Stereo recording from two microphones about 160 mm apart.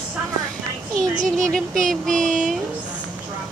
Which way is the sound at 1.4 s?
5° left (ahead or behind).